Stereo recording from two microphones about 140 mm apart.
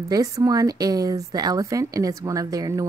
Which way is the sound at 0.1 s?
25° right (ahead or behind).